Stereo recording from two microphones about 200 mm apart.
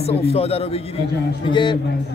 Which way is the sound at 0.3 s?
30° left (ahead or behind).